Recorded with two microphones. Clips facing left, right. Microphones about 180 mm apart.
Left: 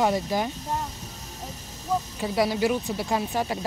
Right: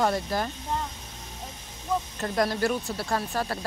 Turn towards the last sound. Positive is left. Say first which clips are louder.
# left 2 dB
turn(degrees=15)  # may be behind; listen again after turning